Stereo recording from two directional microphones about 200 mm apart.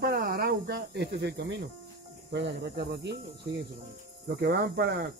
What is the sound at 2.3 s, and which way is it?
Speech, 60° right (ahead or behind).